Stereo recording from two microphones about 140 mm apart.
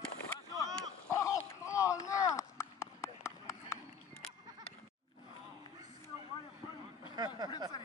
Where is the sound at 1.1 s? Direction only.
20° left (ahead or behind).